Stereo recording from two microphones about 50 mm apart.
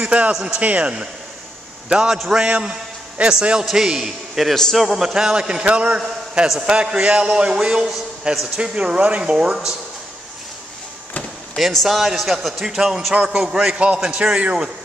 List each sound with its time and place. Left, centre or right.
0.0 s a man's voice: right
2.4 s speech: right
3.2 s a man's voice: centre
5.9 s a man's voice: centre
11.5 s a man's voice: centre
13.1 s a man's voice: right